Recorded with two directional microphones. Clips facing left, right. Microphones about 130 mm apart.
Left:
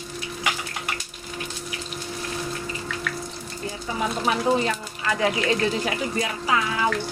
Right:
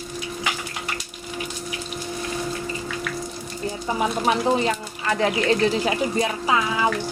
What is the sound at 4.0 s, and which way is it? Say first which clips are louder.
Speech: right 2 dB; 25° right (ahead or behind).